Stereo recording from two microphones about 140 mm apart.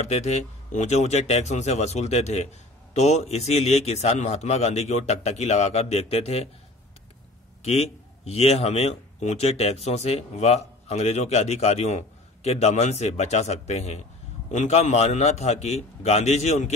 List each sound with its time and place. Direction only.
0.1 s a man's voice: 50° left (ahead or behind)
7.6 s a man's voice: 50° left (ahead or behind)